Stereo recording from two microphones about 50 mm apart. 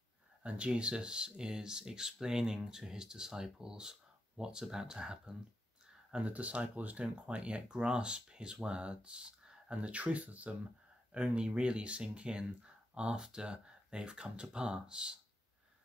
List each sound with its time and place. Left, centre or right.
0.4 s speech: right
6.1 s speech: right